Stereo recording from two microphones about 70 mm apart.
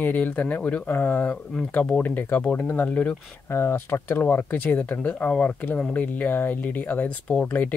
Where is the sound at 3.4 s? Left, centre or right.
Left.